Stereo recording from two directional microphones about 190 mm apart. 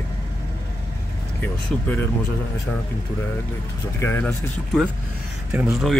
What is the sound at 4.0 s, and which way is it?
Speech, 10° left (ahead or behind).